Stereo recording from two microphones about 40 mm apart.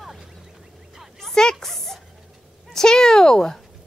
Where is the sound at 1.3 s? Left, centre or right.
Centre.